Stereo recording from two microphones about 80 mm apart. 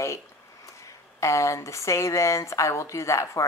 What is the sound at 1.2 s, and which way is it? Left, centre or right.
A woman's voice, left.